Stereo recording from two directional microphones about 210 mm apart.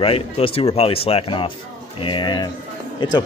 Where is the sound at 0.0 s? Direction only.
25° left (ahead or behind).